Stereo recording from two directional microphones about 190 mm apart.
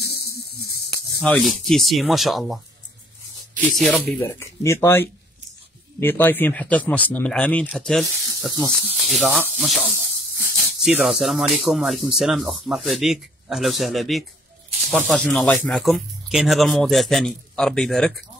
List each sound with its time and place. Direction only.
0.0 s a sound: 60° left (ahead or behind)
1.3 s speech: 5° left (ahead or behind)
3.8 s speech: centre (ahead or behind)
4.2 s speech: 15° left (ahead or behind)